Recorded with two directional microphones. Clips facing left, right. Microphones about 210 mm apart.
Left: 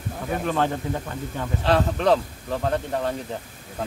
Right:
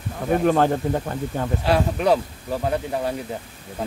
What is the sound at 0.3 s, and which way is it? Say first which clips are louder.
Speech: right 6 dB; 45° right (ahead or behind).